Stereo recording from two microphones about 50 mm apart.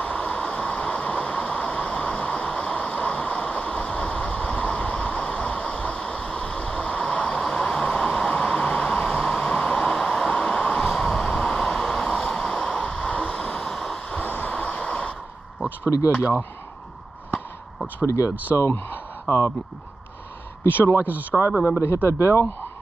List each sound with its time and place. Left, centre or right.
0.0 s vehicle: left
13.6 s a sound: centre
14.0 s vehicle: left
18.0 s speech: left
19.3 s speech: left
20.6 s speech: left
21.0 s speech: right
21.8 s speech: left